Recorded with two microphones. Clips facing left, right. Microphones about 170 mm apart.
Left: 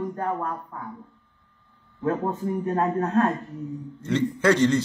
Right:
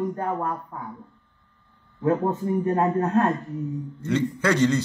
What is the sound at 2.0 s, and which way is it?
A man's voice, centre (ahead or behind).